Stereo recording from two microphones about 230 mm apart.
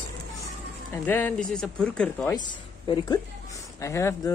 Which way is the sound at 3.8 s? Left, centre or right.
Centre.